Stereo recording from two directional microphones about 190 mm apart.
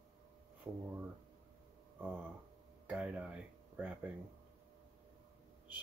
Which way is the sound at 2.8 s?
5° right (ahead or behind).